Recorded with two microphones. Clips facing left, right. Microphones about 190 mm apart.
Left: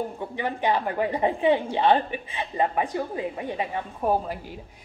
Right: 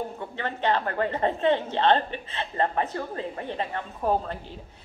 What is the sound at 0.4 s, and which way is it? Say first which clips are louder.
A woman's voice: left 1 dB; 10° left (ahead or behind).